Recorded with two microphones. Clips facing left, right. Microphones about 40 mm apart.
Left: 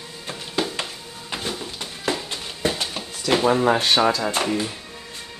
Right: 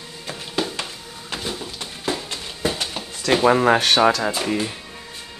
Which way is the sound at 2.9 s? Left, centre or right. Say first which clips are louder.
Right 1 dB; centre.